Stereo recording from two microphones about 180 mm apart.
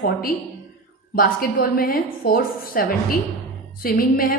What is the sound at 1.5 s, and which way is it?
A woman's voice, 55° left (ahead or behind).